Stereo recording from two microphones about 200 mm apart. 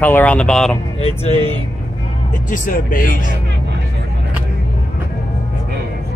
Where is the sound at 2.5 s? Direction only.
40° left (ahead or behind).